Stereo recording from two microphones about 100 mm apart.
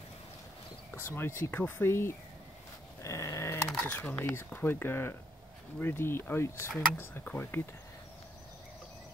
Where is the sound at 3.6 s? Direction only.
15° left (ahead or behind).